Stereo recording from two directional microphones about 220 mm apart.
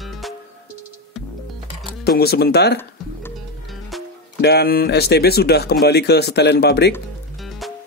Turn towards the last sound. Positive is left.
turn(degrees=0)  # may be behind; listen again after turning